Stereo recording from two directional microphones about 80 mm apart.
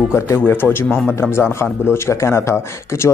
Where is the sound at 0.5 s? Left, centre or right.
Left.